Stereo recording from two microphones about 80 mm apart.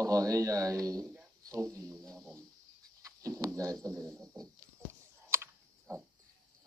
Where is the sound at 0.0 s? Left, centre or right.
Right.